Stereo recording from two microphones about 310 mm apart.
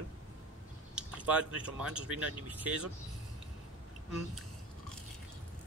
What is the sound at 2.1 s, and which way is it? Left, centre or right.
Speech, right.